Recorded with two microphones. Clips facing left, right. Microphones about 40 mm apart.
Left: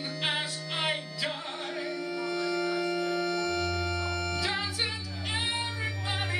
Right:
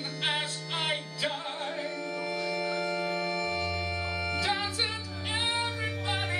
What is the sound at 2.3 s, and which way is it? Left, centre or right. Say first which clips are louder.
Organ: left 2 dB; centre.